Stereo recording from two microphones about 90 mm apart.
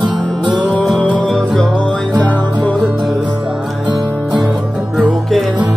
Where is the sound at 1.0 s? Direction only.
10° left (ahead or behind).